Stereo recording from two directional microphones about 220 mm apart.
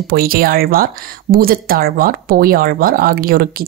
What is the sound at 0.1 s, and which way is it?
Speech, 40° right (ahead or behind).